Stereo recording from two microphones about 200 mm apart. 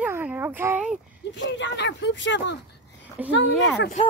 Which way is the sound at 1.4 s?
65° left (ahead or behind).